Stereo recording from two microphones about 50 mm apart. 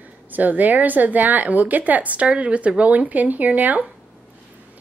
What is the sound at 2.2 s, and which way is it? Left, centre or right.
Speech, right.